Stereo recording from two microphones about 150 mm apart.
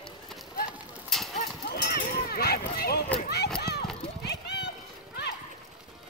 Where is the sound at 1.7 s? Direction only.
80° left.